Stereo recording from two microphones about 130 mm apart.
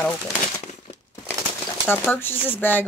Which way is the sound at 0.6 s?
55° left (ahead or behind).